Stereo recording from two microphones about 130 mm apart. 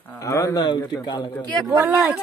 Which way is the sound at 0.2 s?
25° left (ahead or behind).